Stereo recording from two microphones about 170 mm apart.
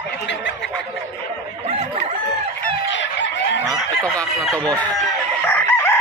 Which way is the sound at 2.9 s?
90° left.